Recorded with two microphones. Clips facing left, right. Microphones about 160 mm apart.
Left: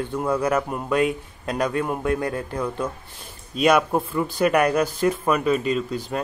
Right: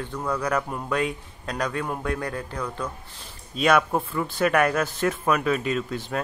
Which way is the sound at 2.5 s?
10° left (ahead or behind).